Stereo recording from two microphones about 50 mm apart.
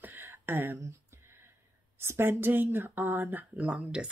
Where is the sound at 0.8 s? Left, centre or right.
Right.